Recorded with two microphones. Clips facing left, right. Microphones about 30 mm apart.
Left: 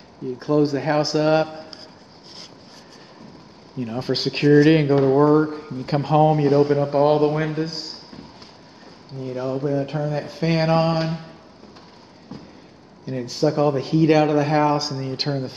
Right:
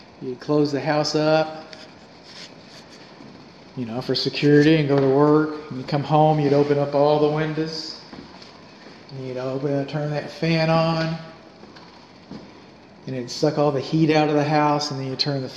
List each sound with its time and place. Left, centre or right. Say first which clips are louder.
0.5 s speech: left 1 dB; centre
3.8 s speech: even; centre
7.9 s drawer open or close: even; centre
9.2 s speech: left 1 dB; centre
12.3 s vehicle: even; centre
13.3 s speech: left 1 dB; centre